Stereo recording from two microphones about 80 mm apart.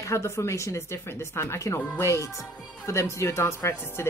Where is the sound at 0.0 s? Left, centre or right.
Left.